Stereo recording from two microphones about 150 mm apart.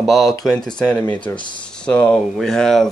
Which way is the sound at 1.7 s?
5° left (ahead or behind).